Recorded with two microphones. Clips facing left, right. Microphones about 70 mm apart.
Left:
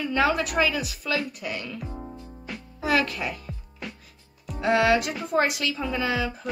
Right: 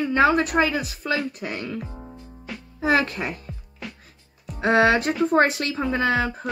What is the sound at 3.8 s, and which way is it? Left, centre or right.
Music, centre.